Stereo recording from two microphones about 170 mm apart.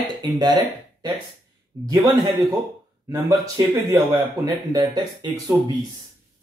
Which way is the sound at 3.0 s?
20° right (ahead or behind).